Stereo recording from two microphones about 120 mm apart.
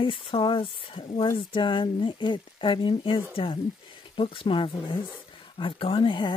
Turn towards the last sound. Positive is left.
turn(degrees=40)  # may be behind; listen again after turning